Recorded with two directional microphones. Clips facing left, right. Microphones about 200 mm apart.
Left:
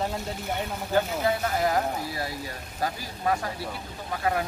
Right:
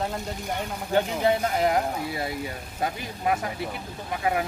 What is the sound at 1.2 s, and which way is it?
Speech, 25° right (ahead or behind).